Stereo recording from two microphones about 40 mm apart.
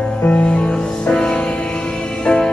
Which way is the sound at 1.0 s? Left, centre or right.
Left.